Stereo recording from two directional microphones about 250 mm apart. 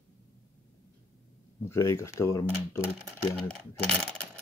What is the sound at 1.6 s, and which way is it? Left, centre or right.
Speech, centre.